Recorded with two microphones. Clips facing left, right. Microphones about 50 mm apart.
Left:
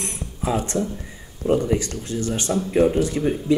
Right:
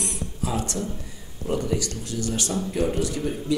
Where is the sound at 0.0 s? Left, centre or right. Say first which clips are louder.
Left 3 dB; left.